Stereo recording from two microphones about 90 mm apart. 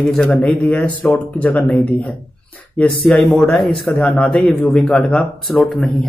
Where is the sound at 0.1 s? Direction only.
10° left (ahead or behind).